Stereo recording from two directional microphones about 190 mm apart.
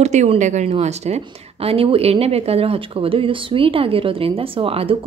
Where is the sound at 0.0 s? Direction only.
35° right (ahead or behind).